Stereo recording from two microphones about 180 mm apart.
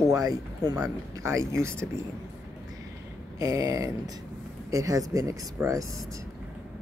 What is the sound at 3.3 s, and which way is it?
Speech, 20° right (ahead or behind).